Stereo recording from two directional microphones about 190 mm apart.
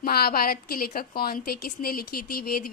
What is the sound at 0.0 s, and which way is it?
A woman's voice, 50° left (ahead or behind).